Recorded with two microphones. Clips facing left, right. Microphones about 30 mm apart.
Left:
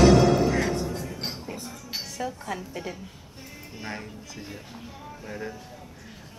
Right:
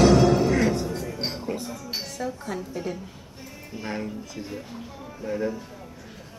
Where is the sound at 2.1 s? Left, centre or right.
Centre.